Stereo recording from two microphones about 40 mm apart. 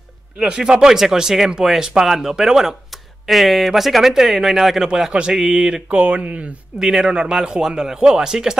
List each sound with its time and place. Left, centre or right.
0.4 s a man's voice: centre
3.3 s a man's voice: centre
5.1 s a man's voice: right
5.9 s speech: right
6.8 s a man's voice: centre